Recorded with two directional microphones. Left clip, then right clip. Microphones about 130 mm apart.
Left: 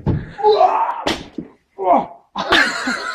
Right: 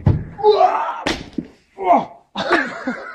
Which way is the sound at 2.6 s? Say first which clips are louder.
Left 7 dB; 15° left (ahead or behind).